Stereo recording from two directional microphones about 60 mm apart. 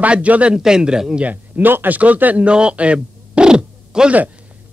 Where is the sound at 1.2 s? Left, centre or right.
Right; by 4.1 s centre.